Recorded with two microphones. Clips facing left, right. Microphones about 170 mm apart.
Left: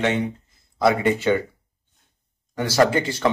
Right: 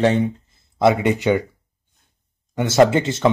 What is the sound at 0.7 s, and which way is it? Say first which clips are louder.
Speech: right 2 dB; 20° right (ahead or behind).